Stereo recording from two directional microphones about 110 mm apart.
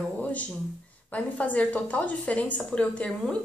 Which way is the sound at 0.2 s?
15° left (ahead or behind).